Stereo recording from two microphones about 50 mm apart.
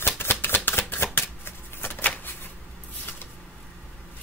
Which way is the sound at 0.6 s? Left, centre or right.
Left.